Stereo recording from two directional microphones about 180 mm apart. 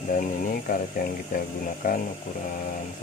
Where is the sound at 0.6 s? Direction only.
50° left (ahead or behind).